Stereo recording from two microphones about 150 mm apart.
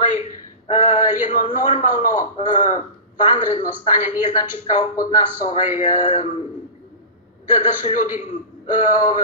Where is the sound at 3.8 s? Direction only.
50° left (ahead or behind).